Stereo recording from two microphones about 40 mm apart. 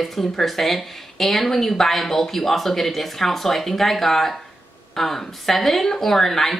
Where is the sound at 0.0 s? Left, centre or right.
Centre.